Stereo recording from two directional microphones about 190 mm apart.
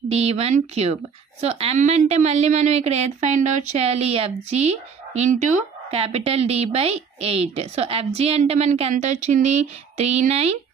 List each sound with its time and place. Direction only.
0.1 s a woman's voice: 35° right (ahead or behind)